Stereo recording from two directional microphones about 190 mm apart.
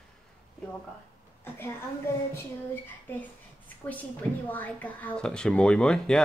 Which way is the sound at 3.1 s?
10° left (ahead or behind).